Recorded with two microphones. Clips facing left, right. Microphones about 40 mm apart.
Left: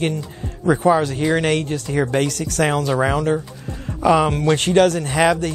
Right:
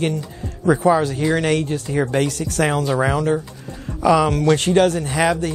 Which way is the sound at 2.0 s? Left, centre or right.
Left.